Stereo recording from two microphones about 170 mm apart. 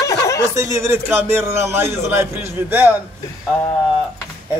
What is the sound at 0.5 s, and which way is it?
A man's voice, 20° right (ahead or behind).